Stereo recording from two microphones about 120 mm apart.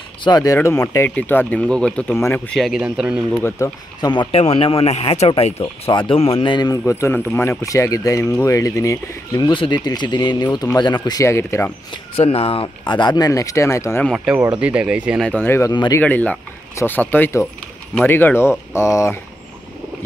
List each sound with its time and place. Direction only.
0.2 s speech: 35° left (ahead or behind)
1.1 s speech: 15° left (ahead or behind)
2.5 s speech: centre (ahead or behind)
3.4 s speech: 25° left (ahead or behind)
4.3 s speech: 55° left (ahead or behind)
5.3 s speech: 50° left (ahead or behind)
6.9 s speech: 20° left (ahead or behind)
9.4 s speech: 40° left (ahead or behind)
11.2 s speech: 20° left (ahead or behind)
12.2 s speech: 55° left (ahead or behind); by 14.0 s 25° left (ahead or behind)
14.1 s speech: 5° right (ahead or behind)
15.2 s speech: 15° left (ahead or behind)